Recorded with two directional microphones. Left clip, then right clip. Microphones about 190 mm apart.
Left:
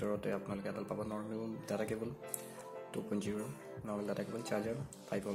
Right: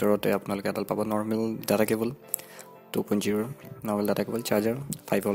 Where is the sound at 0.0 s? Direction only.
55° right (ahead or behind).